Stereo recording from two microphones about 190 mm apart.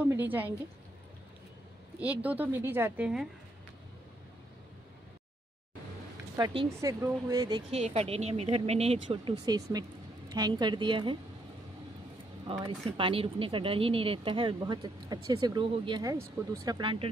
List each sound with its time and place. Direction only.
0.0 s a sound: 10° right (ahead or behind)
2.0 s a woman's voice: 10° right (ahead or behind)
6.3 s a woman's voice: 25° right (ahead or behind)
7.7 s speech: 35° right (ahead or behind)
12.4 s speech: 30° right (ahead or behind)